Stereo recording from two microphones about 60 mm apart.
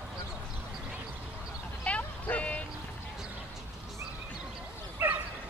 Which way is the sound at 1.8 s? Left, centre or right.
Left.